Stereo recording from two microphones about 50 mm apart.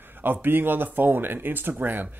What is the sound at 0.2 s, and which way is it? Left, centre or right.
A man's voice, right.